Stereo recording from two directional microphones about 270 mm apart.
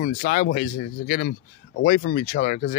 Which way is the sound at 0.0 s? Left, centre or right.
Left.